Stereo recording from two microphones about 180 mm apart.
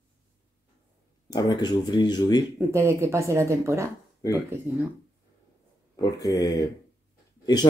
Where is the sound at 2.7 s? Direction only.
15° right (ahead or behind).